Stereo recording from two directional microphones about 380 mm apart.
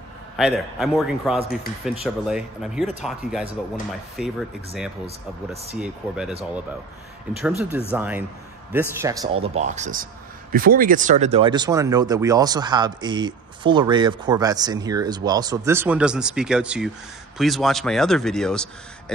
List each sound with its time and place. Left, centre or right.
0.4 s speech: centre
5.0 s speech: centre
5.8 s speech: centre
7.4 s speech: centre